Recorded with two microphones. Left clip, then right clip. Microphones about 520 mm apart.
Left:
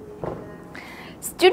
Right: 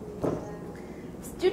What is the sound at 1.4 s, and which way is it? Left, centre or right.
Speech, left.